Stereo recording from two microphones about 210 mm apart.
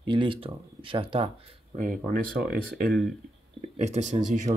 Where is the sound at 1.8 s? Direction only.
40° right (ahead or behind).